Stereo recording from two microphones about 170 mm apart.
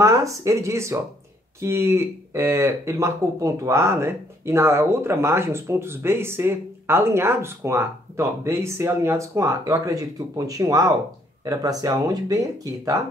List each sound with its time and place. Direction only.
0.0 s speech: 20° right (ahead or behind)